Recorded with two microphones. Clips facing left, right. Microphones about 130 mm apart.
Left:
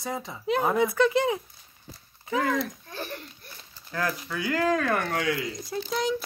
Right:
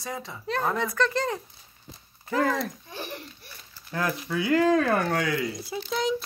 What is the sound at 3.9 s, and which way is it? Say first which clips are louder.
Speech: right 1 dB; 25° right (ahead or behind).